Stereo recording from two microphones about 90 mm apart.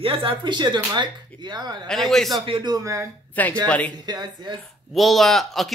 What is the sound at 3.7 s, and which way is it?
Speech, 15° left (ahead or behind).